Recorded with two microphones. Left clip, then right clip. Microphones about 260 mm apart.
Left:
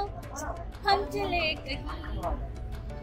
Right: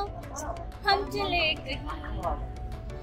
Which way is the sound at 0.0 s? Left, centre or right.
Centre.